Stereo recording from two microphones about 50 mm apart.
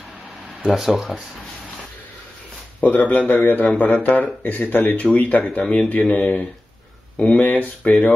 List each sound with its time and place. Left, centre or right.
0.6 s speech: centre
2.8 s speech: left